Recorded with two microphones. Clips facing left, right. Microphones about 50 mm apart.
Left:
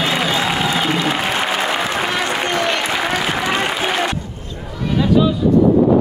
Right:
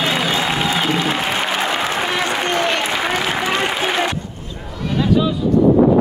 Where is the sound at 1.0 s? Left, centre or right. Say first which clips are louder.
Left 1 dB; centre.